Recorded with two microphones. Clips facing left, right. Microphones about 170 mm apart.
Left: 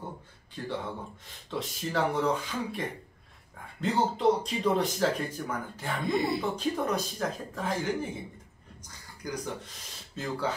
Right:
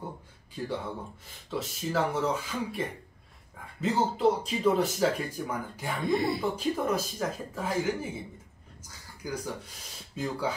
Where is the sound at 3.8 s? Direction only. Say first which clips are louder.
Even; 5° right (ahead or behind).